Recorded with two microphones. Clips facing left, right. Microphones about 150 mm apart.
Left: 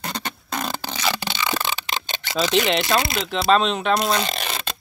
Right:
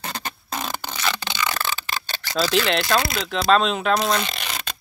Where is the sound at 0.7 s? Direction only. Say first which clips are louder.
Left 2 dB; 15° left (ahead or behind).